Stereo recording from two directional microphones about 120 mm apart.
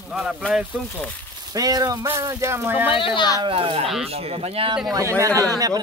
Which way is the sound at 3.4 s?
50° right (ahead or behind).